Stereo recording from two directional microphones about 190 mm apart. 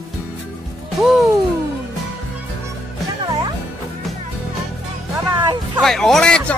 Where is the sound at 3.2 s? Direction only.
25° right (ahead or behind).